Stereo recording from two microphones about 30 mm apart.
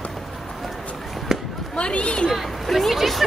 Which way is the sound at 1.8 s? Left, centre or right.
Left.